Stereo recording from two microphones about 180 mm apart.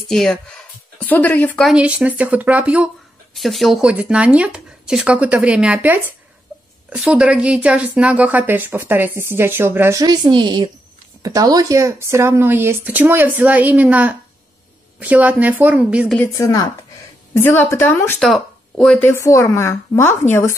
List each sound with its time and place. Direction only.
0.1 s speech: centre (ahead or behind)
1.7 s a woman's voice: 5° right (ahead or behind)
16.2 s a woman's voice: 15° left (ahead or behind)
18.2 s a woman's voice: centre (ahead or behind)